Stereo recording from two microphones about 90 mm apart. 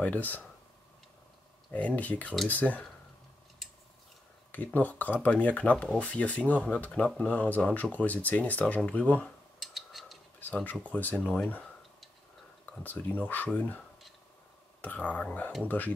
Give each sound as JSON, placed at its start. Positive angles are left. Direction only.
{"t": 0.0, "sound": "speech", "side_deg": 20}
{"t": 1.7, "sound": "speech", "side_deg": 15}
{"t": 4.5, "sound": "speech", "side_deg": 20}
{"t": 9.6, "sound": "a sound", "side_deg": 0}
{"t": 10.4, "sound": "speech", "side_deg": 20}
{"t": 12.8, "sound": "speech", "side_deg": 20}
{"t": 14.8, "sound": "speech", "side_deg": 15}